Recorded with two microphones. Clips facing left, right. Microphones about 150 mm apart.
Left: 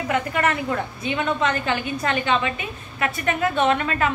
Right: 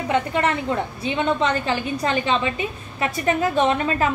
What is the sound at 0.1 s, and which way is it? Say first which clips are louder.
A woman's voice: right 2 dB; 25° right (ahead or behind).